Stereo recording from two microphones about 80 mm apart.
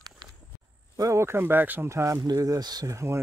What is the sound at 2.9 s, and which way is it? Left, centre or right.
Speech, right.